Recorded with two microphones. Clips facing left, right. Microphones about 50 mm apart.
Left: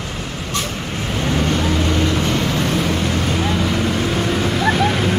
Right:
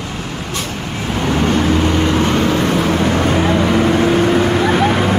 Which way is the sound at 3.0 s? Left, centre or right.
Right.